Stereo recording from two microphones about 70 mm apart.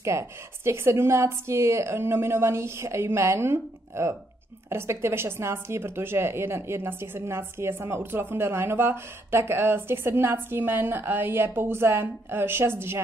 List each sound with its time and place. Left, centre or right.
0.0 s speech: right